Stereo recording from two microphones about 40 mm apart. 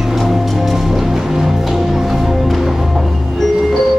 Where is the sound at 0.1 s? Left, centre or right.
Centre.